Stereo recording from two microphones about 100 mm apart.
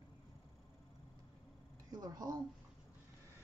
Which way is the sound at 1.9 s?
45° right (ahead or behind).